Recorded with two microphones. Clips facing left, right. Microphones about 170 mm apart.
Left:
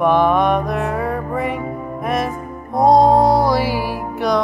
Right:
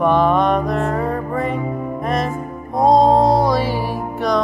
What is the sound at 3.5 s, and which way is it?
Music, 5° left (ahead or behind).